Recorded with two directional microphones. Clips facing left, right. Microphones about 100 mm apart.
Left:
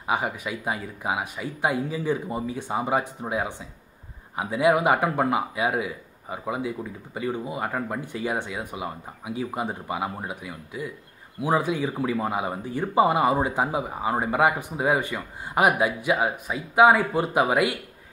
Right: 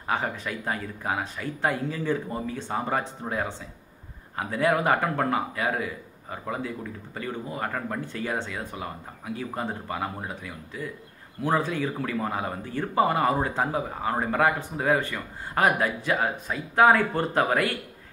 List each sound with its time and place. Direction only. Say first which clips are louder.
0.0 s speech: left 2 dB; 15° left (ahead or behind)